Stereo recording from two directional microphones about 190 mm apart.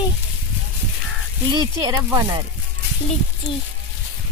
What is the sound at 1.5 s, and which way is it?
Speech, 20° right (ahead or behind).